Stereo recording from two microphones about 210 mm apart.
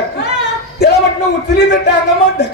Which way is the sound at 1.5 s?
50° left (ahead or behind).